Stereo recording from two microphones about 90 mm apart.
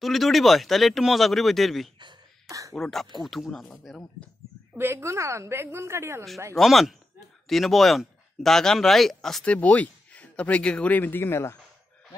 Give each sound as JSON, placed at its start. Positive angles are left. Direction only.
{"t": 0.0, "sound": "speech", "side_deg": 0}
{"t": 2.4, "sound": "a sound", "side_deg": -40}
{"t": 2.7, "sound": "speech", "side_deg": 0}
{"t": 4.7, "sound": "a woman's voice", "side_deg": -30}
{"t": 6.5, "sound": "speech", "side_deg": 0}